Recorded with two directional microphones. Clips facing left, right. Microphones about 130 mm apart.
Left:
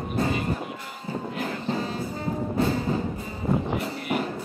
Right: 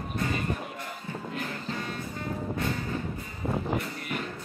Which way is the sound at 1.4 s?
30° left (ahead or behind).